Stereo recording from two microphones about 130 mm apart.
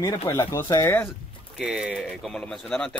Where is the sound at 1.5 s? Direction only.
5° right (ahead or behind).